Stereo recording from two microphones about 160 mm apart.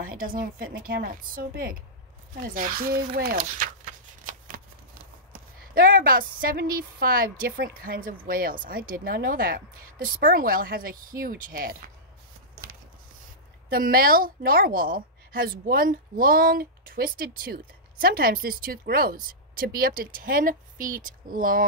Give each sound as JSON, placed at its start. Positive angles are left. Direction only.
{"t": 0.0, "sound": "a woman's voice", "side_deg": -60}
{"t": 2.4, "sound": "a sound", "side_deg": -60}
{"t": 5.3, "sound": "a woman's voice", "side_deg": -65}
{"t": 13.7, "sound": "a woman's voice", "side_deg": -65}